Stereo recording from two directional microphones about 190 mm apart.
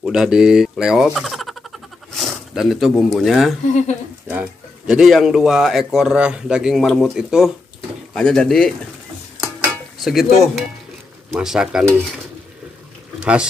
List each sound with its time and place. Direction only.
0.0 s speech: 5° right (ahead or behind)
3.6 s speech: 40° left (ahead or behind)
4.3 s speech: 5° right (ahead or behind)
9.9 s speech: centre (ahead or behind)
13.2 s speech: 5° right (ahead or behind)